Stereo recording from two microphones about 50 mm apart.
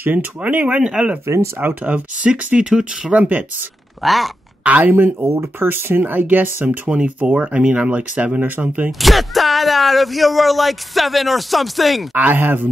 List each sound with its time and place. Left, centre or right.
0.0 s speech: right
0.7 s speech: centre
1.2 s speech: right
1.9 s speech: right
2.3 s speech: centre
3.1 s speech: right
4.0 s speech: centre
4.6 s speech: right
5.2 s speech: right
5.6 s speech: right
6.9 s speech: right
8.4 s speech: right
9.0 s speech: centre
12.1 s speech: right